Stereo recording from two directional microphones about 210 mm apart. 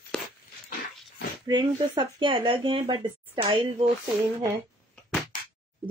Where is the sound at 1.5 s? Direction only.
20° right (ahead or behind).